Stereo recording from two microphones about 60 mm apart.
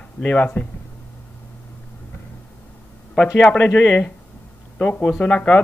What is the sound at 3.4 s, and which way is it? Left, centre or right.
Speech, left.